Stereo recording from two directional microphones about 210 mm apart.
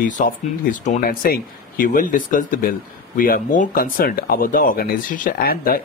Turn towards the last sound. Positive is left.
turn(degrees=45)  # may be behind; listen again after turning